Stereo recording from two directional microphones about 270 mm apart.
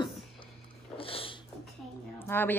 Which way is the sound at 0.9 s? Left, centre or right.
Centre.